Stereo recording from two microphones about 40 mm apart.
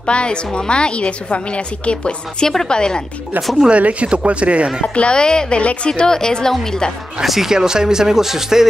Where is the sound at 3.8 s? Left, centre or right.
Right.